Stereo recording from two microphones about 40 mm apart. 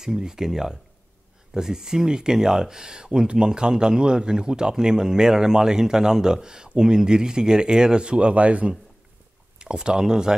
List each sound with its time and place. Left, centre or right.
0.0 s speech: centre; by 8.7 s right
9.6 s speech: right